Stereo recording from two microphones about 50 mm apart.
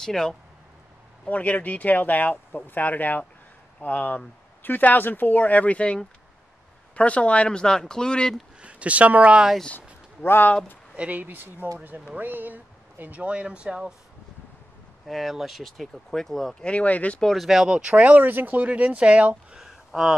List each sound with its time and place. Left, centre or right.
0.0 s speech: centre
1.2 s speech: left
8.5 s speech: right
9.8 s a sound: left
11.0 s speech: right
13.3 s speech: right
15.0 s speech: centre
16.6 s speech: left
17.2 s speech: centre
17.5 s speech: centre
17.8 s speech: right
19.5 s a sound: centre